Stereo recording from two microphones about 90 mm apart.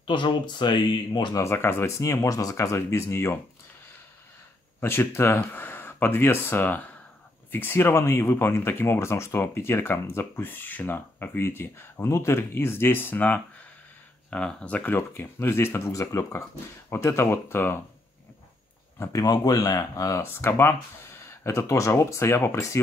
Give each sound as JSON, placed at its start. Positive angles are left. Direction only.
{"t": 0.0, "sound": "speech", "side_deg": 65}
{"t": 1.3, "sound": "speech", "side_deg": 30}
{"t": 4.7, "sound": "speech", "side_deg": 25}
{"t": 15.0, "sound": "speech", "side_deg": 25}
{"t": 19.1, "sound": "speech", "side_deg": 45}
{"t": 20.2, "sound": "speech", "side_deg": 25}